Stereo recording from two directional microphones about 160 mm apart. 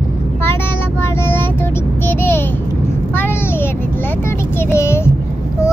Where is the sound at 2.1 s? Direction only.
15° left (ahead or behind).